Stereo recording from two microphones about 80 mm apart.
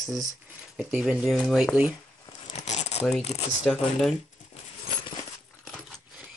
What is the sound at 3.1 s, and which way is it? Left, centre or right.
Speech, centre.